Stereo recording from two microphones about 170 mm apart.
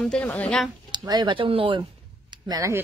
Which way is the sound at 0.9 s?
25° right (ahead or behind).